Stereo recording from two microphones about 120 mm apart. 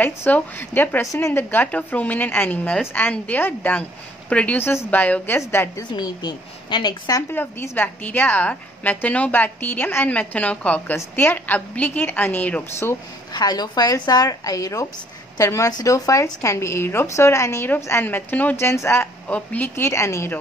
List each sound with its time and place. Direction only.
0.0 s a woman's voice: 15° left (ahead or behind)
5.8 s a woman's voice: 35° left (ahead or behind)
7.2 s a woman's voice: 20° left (ahead or behind)
13.3 s a woman's voice: 35° left (ahead or behind)